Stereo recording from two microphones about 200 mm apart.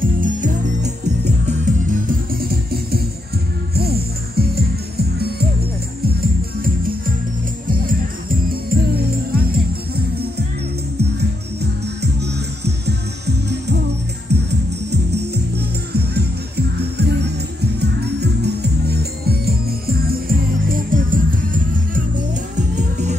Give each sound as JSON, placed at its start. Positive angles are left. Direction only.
{"t": 0.0, "sound": "music", "side_deg": -40}
{"t": 8.5, "sound": "music", "side_deg": -50}
{"t": 11.0, "sound": "music", "side_deg": -55}
{"t": 14.5, "sound": "music", "side_deg": -55}